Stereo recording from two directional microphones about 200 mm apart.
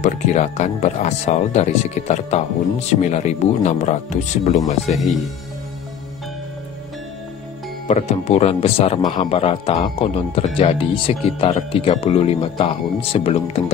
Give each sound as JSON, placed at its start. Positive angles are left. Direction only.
{"t": 0.0, "sound": "speech", "side_deg": 35}
{"t": 7.9, "sound": "speech", "side_deg": 35}